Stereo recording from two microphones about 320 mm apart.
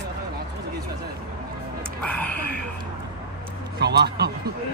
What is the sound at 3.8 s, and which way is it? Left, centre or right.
Speech, right.